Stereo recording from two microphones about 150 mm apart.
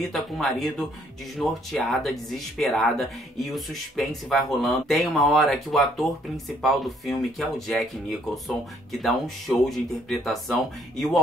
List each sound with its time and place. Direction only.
0.1 s speech: centre (ahead or behind)